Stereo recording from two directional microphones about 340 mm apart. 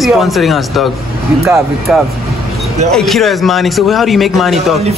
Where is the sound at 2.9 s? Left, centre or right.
Centre.